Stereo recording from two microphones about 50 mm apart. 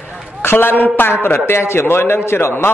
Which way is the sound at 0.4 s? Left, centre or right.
Left.